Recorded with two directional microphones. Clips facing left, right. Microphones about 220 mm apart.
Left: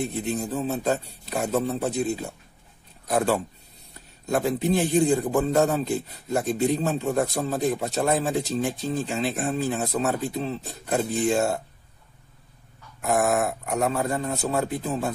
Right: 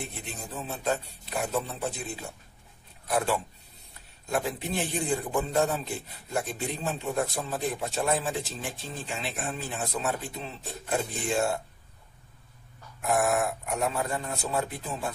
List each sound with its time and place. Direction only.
0.0 s speech: 40° left (ahead or behind)
3.1 s speech: 40° left (ahead or behind)
13.0 s speech: 45° left (ahead or behind)